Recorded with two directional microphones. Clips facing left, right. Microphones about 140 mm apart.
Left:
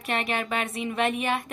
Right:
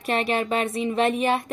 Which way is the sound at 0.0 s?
35° right (ahead or behind).